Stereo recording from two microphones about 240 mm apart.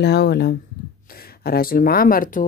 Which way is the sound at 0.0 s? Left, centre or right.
Left.